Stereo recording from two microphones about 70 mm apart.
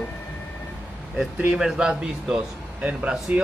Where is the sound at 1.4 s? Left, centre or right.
Centre.